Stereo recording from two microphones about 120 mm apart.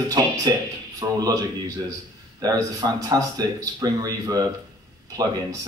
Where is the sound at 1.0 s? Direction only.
30° right (ahead or behind).